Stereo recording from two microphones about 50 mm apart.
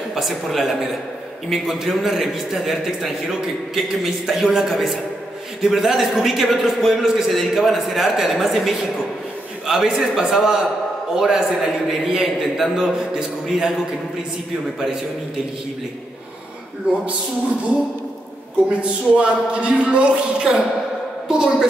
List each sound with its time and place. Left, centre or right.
0.1 s a man's voice: centre
9.7 s a man's voice: centre
18.7 s a man's voice: right
21.3 s a man's voice: centre